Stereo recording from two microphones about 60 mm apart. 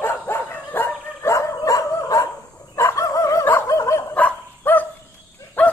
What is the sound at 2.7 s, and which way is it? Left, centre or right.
Chicken, left.